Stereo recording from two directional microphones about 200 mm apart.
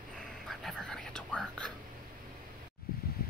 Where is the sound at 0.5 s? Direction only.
Centre (ahead or behind).